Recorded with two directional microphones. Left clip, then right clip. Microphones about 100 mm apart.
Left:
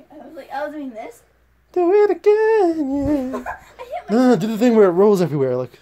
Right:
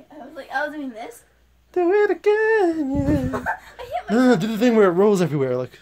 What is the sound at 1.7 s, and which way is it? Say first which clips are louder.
Humming: left 3 dB; 25° left (ahead or behind).